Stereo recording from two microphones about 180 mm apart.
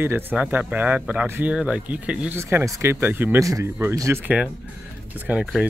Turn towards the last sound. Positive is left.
turn(degrees=-5)  # may be behind; listen again after turning